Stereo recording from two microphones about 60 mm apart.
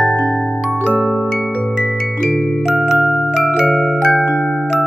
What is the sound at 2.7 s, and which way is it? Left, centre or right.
Music, centre.